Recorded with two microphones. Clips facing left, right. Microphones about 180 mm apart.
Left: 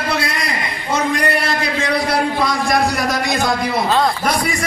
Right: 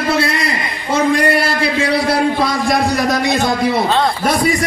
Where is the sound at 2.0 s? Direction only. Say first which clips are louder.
Right 3 dB; 30° right (ahead or behind).